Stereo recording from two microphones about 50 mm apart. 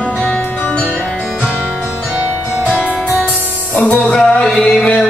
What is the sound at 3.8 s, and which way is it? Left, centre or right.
Music, left.